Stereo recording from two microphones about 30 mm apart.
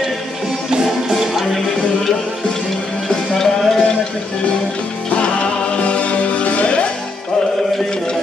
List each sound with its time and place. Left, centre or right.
1.1 s music: centre
3.1 s music: centre
5.1 s music: left